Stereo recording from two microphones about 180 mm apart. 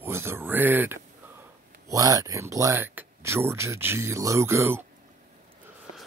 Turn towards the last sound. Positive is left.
turn(degrees=-15)  # may be behind; listen again after turning